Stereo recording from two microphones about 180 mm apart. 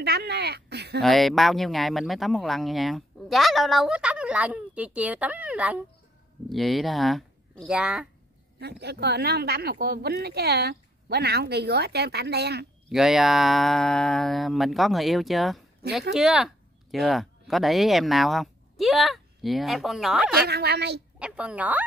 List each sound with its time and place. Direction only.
0.0 s speech: 65° right (ahead or behind)
1.0 s speech: centre (ahead or behind)
8.5 s speech: 65° right (ahead or behind)
12.9 s speech: centre (ahead or behind)
20.4 s speech: 65° right (ahead or behind)
21.2 s speech: 5° right (ahead or behind)